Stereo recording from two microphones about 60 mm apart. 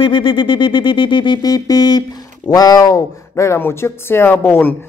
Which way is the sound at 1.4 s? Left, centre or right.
Left.